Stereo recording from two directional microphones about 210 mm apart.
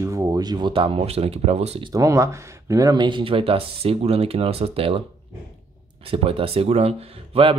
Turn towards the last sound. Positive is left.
turn(degrees=-25)  # may be behind; listen again after turning